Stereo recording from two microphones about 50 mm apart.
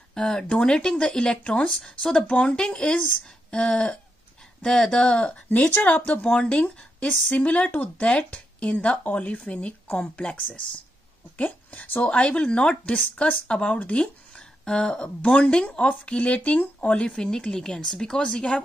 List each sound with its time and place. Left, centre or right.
0.1 s speech: centre; by 14.0 s left
14.3 s speech: centre